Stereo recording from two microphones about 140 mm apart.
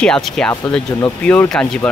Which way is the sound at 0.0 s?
5° left (ahead or behind).